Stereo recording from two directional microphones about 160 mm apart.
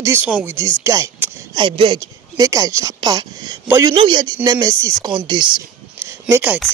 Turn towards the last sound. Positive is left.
turn(degrees=-5)  # may be behind; listen again after turning